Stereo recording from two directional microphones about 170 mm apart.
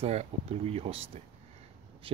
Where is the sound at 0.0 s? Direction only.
40° right (ahead or behind).